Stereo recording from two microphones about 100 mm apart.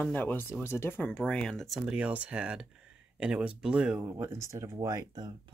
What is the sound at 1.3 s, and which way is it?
Speech, 10° left (ahead or behind).